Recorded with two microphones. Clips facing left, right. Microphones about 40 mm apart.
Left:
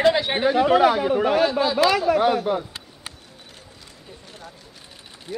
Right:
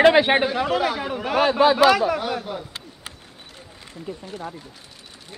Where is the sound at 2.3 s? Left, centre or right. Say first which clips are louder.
Left 6 dB; centre.